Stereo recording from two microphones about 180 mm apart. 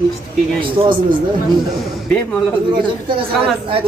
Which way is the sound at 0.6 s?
30° right (ahead or behind).